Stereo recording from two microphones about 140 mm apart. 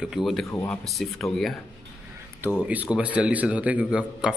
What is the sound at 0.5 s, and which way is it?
Speech, 20° left (ahead or behind).